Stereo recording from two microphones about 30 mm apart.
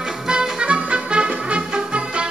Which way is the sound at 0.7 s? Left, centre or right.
Right.